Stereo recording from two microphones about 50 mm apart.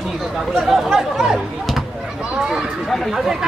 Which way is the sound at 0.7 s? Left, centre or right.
Centre.